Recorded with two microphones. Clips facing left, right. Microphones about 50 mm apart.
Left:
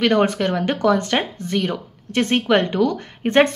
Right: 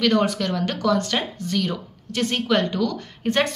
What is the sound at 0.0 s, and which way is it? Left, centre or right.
Speech, left.